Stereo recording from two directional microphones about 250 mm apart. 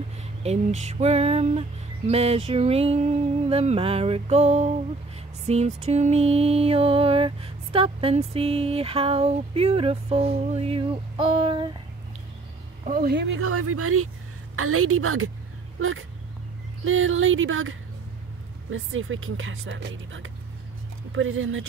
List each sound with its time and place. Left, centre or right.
0.4 s music: right
12.8 s speech: right
13.3 s a woman's voice: right